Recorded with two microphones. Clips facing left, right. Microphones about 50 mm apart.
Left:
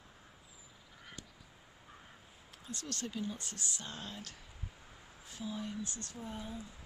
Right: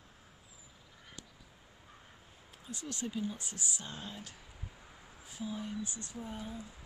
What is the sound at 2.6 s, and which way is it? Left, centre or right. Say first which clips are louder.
Speech: right 2 dB; centre.